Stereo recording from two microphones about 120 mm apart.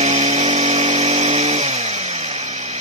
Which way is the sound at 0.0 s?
85° right.